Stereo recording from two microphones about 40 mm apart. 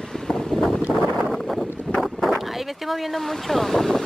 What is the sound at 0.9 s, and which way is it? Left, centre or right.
Wind noise, right.